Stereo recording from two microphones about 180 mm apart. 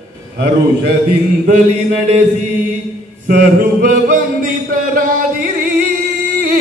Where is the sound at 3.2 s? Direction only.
45° right (ahead or behind).